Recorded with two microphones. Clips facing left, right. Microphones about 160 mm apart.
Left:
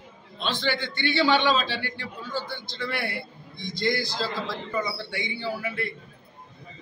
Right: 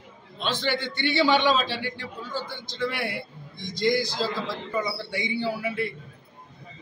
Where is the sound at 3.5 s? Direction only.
40° right (ahead or behind).